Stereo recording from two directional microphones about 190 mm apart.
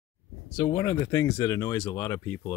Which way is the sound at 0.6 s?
15° left (ahead or behind).